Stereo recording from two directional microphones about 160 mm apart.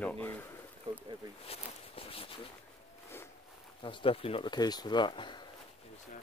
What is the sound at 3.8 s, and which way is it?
Speech, 35° left (ahead or behind).